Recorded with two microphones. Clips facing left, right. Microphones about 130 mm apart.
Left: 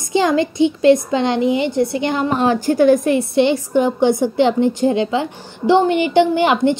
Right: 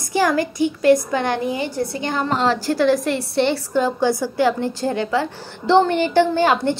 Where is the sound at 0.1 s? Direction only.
20° left (ahead or behind).